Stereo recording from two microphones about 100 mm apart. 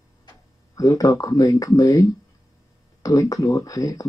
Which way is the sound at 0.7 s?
35° left (ahead or behind).